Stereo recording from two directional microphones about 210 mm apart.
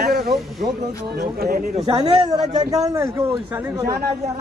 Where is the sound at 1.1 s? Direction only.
45° right (ahead or behind).